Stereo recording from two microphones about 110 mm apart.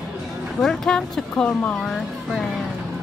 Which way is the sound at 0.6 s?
5° left (ahead or behind).